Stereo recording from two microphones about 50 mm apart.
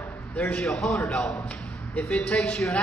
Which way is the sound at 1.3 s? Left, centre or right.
Left.